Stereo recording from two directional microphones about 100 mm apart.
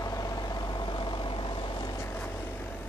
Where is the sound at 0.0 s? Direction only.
35° left (ahead or behind).